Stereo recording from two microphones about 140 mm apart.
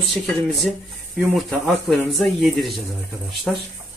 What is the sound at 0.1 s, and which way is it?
Speech, centre (ahead or behind).